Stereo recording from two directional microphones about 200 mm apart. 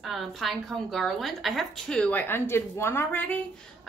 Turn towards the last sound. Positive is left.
turn(degrees=10)  # may be behind; listen again after turning